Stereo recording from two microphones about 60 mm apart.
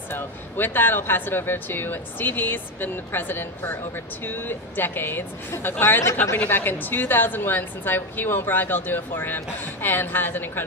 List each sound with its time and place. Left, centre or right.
0.1 s a woman's voice: left
6.3 s a woman's voice: left